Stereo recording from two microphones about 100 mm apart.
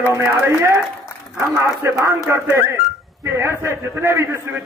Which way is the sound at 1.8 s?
25° right (ahead or behind).